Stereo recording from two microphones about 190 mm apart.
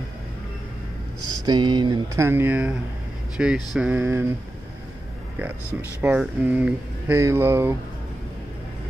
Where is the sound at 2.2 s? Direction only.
10° right (ahead or behind).